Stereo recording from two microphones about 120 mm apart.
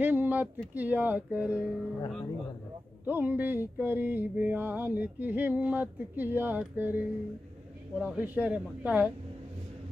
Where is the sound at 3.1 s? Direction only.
15° right (ahead or behind).